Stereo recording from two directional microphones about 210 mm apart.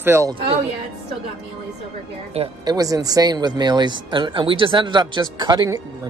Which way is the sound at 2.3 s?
25° right (ahead or behind).